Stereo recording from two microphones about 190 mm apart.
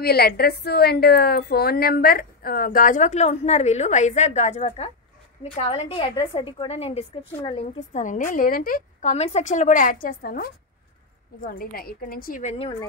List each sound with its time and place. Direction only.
0.0 s a woman's voice: 55° left (ahead or behind)
9.1 s a woman's voice: 35° left (ahead or behind)